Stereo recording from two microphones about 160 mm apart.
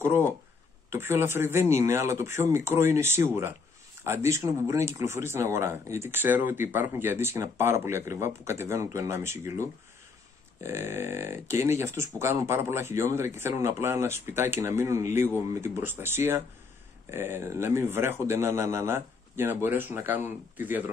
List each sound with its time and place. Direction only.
0.0 s speech: 15° right (ahead or behind)